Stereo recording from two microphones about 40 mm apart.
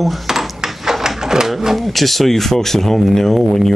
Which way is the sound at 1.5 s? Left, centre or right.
Centre.